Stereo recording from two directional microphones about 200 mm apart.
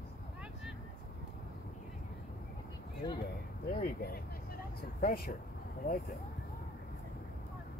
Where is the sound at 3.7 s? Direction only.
50° left (ahead or behind).